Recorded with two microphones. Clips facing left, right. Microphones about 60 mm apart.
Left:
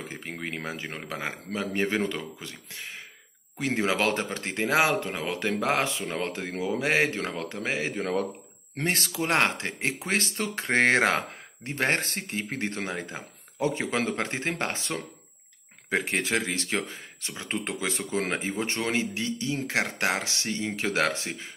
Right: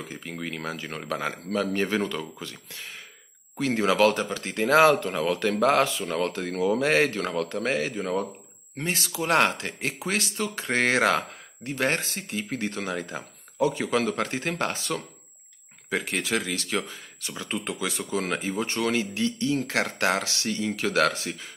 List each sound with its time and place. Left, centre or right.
0.1 s speech: left
3.5 s speech: left
7.9 s speech: left
9.2 s speech: left